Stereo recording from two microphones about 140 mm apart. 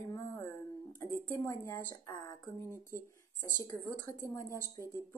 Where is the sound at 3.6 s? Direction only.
20° left (ahead or behind).